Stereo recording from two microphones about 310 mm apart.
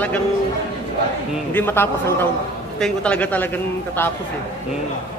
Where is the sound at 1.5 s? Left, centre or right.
Centre.